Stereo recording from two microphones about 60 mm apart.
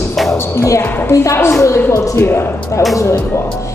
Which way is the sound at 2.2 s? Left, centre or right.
Left.